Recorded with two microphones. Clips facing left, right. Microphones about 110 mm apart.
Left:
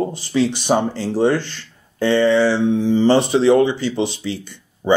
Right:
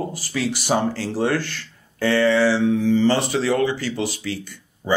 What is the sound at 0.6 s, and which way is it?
Speech, 20° left (ahead or behind).